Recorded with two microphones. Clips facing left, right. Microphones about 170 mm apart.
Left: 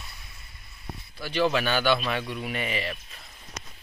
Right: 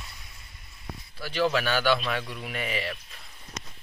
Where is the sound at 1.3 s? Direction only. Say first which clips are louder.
Left 1 dB; 20° left (ahead or behind).